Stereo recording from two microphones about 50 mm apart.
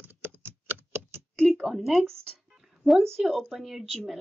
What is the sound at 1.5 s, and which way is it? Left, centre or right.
Speech, centre.